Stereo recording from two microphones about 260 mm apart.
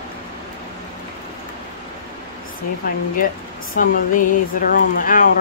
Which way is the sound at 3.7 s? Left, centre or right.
Left.